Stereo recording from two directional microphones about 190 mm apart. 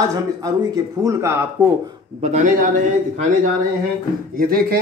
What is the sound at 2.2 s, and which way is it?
Speech, 35° right (ahead or behind).